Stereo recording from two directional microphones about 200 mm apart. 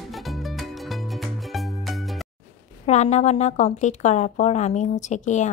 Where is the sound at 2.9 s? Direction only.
35° left (ahead or behind).